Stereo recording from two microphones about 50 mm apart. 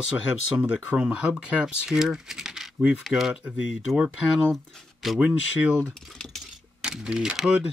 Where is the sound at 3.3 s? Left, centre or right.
Right.